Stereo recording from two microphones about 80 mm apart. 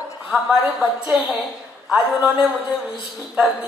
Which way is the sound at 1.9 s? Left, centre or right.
Centre.